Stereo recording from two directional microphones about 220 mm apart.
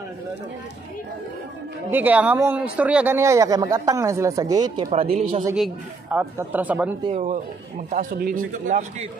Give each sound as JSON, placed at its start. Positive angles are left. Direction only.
{"t": 1.9, "sound": "speech", "side_deg": -10}
{"t": 5.6, "sound": "speech", "side_deg": -5}
{"t": 7.0, "sound": "speech", "side_deg": -30}